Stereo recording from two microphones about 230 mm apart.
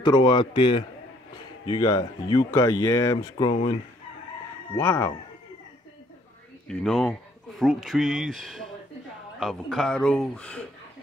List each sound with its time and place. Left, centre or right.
0.0 s speech: centre
4.7 s speech: centre
6.7 s speech: centre